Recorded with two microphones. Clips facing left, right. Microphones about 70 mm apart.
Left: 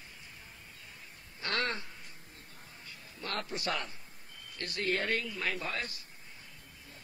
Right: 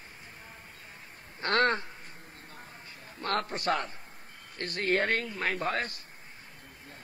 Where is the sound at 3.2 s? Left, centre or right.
Right.